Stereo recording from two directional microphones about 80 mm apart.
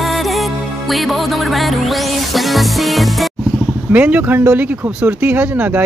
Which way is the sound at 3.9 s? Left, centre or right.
Centre.